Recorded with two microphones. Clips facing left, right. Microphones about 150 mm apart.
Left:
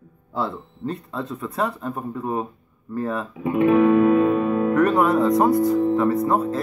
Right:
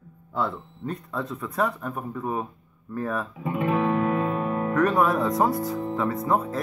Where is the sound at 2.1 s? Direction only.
5° left (ahead or behind).